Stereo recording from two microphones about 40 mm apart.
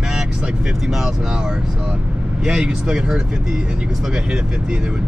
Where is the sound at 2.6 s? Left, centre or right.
Right.